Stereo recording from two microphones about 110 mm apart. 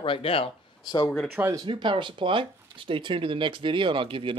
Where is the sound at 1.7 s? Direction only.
45° right (ahead or behind).